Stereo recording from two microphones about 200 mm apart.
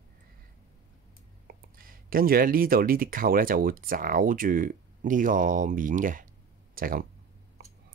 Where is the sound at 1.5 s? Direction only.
45° right (ahead or behind).